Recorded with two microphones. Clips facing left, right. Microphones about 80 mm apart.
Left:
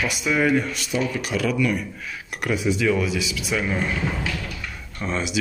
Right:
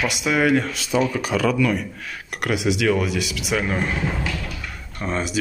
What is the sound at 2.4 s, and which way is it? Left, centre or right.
Speech, right.